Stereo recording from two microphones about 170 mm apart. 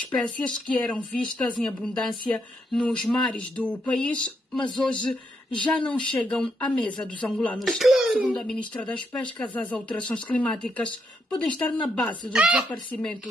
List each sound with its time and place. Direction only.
0.1 s speech: 5° left (ahead or behind)